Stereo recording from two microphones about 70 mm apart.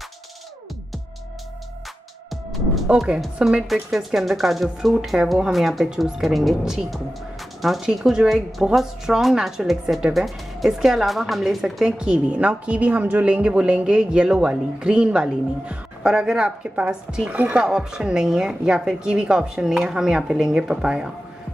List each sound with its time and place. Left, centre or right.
2.9 s a woman's voice: centre
17.6 s a woman's voice: centre